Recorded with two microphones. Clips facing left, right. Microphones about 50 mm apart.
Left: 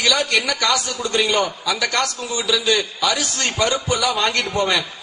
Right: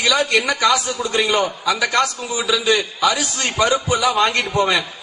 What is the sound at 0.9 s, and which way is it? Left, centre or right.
A man's voice, centre.